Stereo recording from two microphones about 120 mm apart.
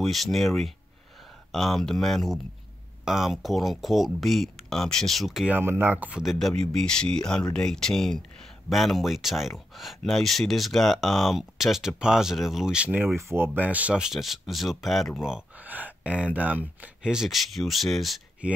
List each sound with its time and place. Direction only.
0.0 s speech: centre (ahead or behind)
5.5 s speech: 15° right (ahead or behind)
6.2 s speech: 5° left (ahead or behind)